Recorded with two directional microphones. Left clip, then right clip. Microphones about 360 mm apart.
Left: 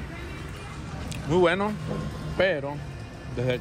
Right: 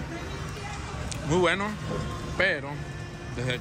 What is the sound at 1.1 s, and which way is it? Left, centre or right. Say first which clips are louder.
A man's voice: left 2 dB; centre.